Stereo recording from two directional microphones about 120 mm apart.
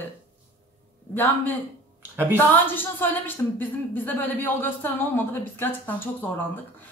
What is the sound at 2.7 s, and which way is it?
A woman's voice, 15° left (ahead or behind).